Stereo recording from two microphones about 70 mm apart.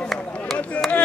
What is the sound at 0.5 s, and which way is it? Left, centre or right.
Speech, centre.